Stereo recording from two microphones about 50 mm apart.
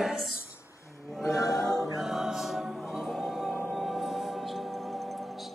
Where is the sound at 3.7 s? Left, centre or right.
Centre.